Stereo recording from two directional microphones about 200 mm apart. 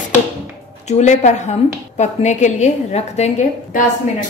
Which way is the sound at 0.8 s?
35° left (ahead or behind).